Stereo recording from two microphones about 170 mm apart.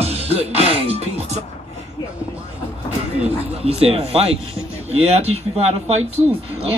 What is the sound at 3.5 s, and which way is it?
Speech, 35° right (ahead or behind).